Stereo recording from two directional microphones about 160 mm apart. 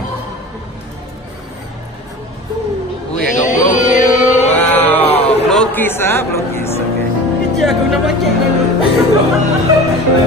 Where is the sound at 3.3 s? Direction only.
50° left (ahead or behind).